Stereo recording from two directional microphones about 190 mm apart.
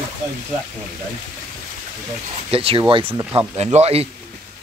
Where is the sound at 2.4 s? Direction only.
30° right (ahead or behind).